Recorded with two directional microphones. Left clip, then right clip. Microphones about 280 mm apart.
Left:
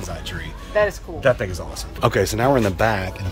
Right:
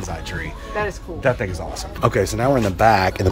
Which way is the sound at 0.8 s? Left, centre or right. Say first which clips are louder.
Left 6 dB; left.